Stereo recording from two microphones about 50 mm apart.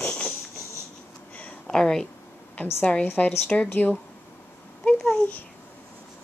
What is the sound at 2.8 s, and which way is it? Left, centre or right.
Speech, left.